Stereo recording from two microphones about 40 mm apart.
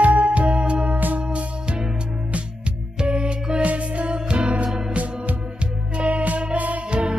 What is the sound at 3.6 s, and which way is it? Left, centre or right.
Music, right.